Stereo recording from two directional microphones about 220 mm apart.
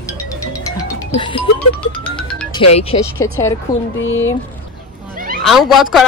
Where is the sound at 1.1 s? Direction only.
25° left (ahead or behind).